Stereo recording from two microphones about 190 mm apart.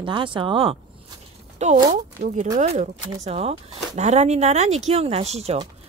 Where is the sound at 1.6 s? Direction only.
35° right (ahead or behind).